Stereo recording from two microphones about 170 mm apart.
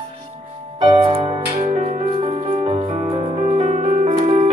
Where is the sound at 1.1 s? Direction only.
40° right (ahead or behind).